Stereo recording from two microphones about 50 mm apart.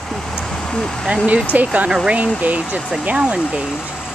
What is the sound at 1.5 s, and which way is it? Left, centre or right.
Speech, right.